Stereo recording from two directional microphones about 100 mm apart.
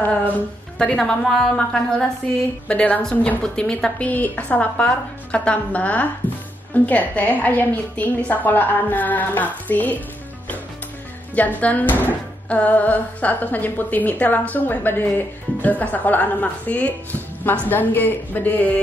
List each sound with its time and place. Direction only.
0.7 s speech: 5° left (ahead or behind)
11.3 s speech: 15° left (ahead or behind)